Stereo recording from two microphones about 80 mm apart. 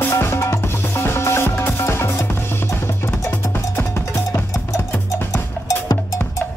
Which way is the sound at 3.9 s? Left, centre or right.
Left.